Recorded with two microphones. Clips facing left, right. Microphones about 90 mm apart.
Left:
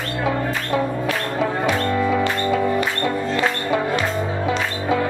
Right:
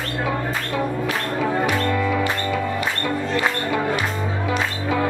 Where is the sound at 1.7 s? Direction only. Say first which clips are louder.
Left 2 dB; 25° left (ahead or behind).